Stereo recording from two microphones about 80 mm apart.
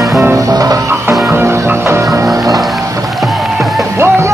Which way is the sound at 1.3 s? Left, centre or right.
Right.